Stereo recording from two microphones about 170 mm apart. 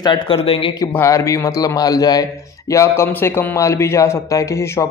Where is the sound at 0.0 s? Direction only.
30° left (ahead or behind).